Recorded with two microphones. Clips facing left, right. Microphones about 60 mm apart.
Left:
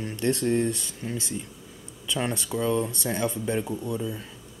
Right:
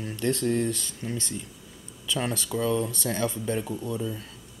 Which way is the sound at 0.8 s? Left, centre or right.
Centre.